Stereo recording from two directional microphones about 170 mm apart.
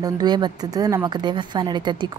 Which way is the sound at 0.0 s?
25° right (ahead or behind).